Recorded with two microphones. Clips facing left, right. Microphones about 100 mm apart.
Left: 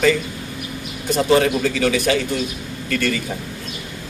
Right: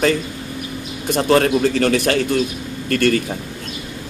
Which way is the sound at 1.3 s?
55° right (ahead or behind).